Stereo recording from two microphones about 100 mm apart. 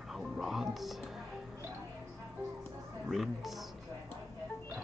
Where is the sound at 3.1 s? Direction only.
Centre (ahead or behind).